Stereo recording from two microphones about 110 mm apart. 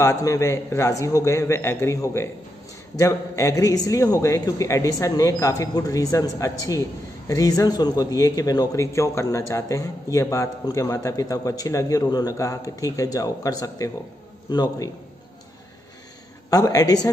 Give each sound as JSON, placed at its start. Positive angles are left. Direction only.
{"t": 0.0, "sound": "a man's voice", "side_deg": 30}
{"t": 16.4, "sound": "a man's voice", "side_deg": 35}